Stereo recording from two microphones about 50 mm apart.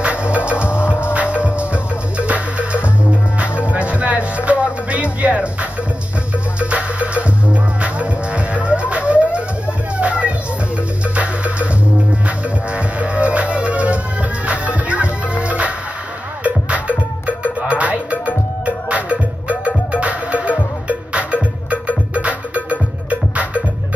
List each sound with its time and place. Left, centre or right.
0.0 s music: right
0.6 s music: left
1.1 s music: right
12.7 s music: right